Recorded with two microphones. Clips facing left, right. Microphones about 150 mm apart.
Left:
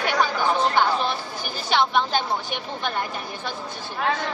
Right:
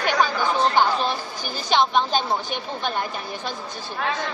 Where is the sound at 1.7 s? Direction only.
20° right (ahead or behind).